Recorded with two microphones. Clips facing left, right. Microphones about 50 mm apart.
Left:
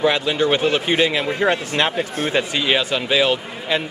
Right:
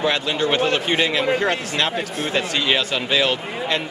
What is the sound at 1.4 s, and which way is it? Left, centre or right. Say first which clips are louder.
Speech: left 3 dB; centre.